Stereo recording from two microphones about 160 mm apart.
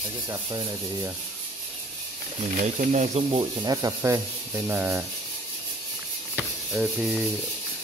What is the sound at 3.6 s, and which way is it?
Speech, 25° right (ahead or behind).